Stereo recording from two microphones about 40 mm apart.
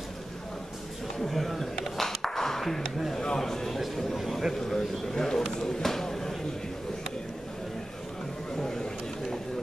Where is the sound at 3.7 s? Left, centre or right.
Centre.